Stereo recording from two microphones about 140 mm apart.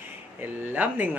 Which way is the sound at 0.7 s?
10° right (ahead or behind).